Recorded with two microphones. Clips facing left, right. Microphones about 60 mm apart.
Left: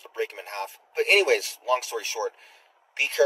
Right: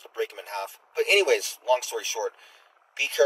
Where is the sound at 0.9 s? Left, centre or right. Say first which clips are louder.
Left 1 dB; left.